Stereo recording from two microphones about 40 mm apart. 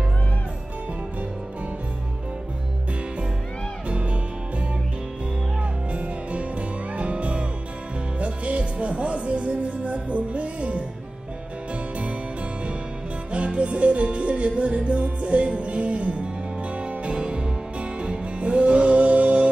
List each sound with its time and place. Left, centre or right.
3.9 s music: right
5.6 s music: right
13.3 s music: right